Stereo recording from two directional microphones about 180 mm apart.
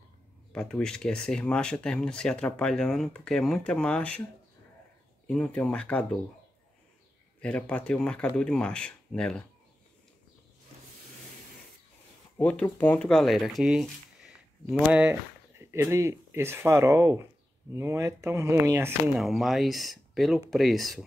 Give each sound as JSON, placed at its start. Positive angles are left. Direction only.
{"t": 0.5, "sound": "speech", "side_deg": 5}
{"t": 5.2, "sound": "speech", "side_deg": 5}
{"t": 7.3, "sound": "speech", "side_deg": 5}
{"t": 12.4, "sound": "speech", "side_deg": 10}
{"t": 19.1, "sound": "speech", "side_deg": 0}